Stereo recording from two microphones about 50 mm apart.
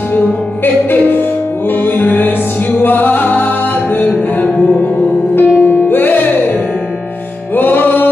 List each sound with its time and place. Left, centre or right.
0.8 s music: left
5.3 s music: left
7.5 s music: left